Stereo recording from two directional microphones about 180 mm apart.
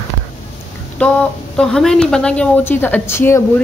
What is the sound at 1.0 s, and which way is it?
A woman's voice, 10° left (ahead or behind).